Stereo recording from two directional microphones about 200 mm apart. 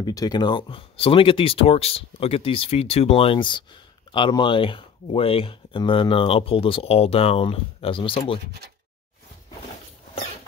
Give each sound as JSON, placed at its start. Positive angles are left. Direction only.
{"t": 0.0, "sound": "speech", "side_deg": 20}